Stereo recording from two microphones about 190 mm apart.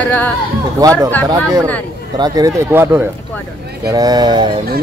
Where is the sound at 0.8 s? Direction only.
20° right (ahead or behind).